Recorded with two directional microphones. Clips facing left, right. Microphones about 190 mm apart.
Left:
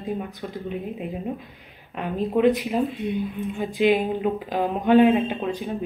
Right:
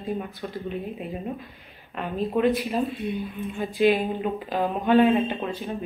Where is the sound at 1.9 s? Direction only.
15° left (ahead or behind).